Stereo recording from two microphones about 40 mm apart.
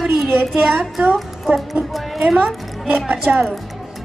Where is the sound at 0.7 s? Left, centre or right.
Right.